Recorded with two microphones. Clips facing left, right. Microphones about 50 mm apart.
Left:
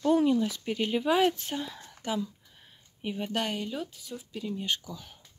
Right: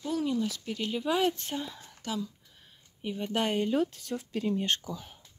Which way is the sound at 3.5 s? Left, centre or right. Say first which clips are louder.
Right 6 dB; right.